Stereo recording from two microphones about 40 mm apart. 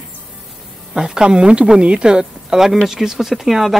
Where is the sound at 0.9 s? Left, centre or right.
Centre.